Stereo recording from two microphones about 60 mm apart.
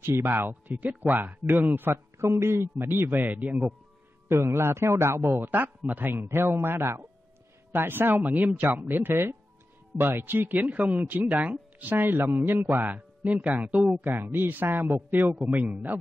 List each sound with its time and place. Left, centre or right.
0.0 s a man's voice: right
0.7 s speech: right
1.9 s a man's voice: right
2.9 s speech: right
4.3 s a man's voice: right
5.4 s speech: right
6.1 s a man's voice: right
7.7 s speech: right
10.6 s speech: right
12.7 s speech: right
15.5 s a man's voice: centre